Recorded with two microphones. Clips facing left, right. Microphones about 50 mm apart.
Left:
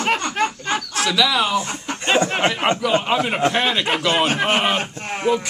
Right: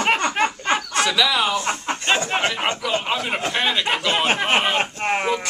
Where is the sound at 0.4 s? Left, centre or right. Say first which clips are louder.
Even; right.